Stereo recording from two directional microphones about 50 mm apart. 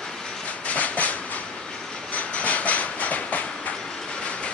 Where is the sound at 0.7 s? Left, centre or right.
Left.